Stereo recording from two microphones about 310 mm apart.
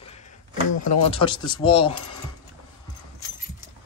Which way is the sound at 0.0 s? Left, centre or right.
Left.